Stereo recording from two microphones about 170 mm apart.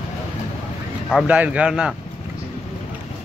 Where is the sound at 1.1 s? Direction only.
5° right (ahead or behind).